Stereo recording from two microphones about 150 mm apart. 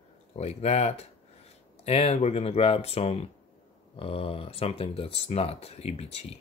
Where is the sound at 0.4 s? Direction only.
45° left (ahead or behind).